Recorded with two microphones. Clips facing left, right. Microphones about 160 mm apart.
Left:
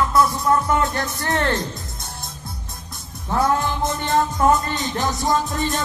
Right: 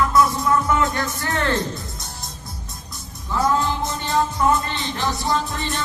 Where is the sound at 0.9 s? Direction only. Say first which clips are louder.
Left 1 dB; 40° left (ahead or behind).